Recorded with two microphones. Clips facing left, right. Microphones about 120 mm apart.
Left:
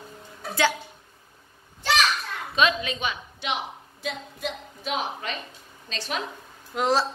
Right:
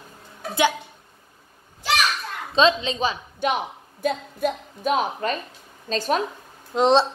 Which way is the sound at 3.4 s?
45° right (ahead or behind).